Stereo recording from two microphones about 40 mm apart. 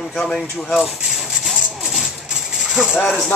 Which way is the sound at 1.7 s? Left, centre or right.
Centre.